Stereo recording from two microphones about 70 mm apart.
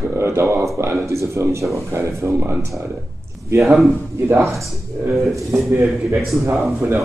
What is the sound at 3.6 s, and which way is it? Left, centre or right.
Speech, centre.